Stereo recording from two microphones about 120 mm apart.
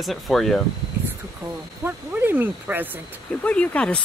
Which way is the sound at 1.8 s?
15° right (ahead or behind).